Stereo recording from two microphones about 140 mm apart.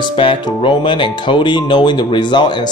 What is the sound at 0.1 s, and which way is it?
Speech, 40° left (ahead or behind).